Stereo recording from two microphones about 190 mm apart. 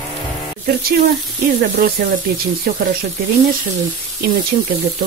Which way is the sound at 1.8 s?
50° right (ahead or behind).